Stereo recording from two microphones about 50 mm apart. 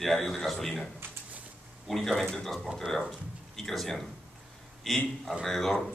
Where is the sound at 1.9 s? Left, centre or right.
Centre.